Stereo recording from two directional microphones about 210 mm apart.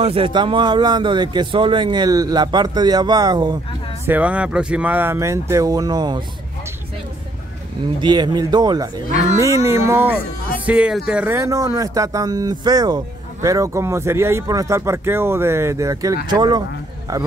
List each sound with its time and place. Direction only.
0.0 s a man's voice: 25° right (ahead or behind)
4.0 s speech: 5° right (ahead or behind)
8.0 s a man's voice: 20° right (ahead or behind)